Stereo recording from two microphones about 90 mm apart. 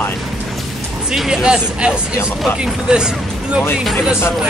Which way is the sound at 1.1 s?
5° right (ahead or behind).